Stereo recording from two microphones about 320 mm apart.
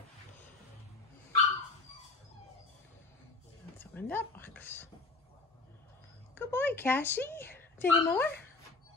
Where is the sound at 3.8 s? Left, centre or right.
Centre.